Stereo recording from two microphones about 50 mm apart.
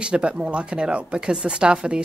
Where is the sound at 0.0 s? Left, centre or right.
Right.